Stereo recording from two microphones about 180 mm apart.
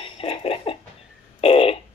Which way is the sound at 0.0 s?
30° left (ahead or behind).